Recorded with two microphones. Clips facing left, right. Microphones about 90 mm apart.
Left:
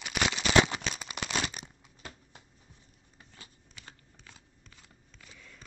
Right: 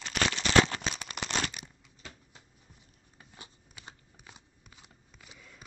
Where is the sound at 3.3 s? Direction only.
20° right (ahead or behind).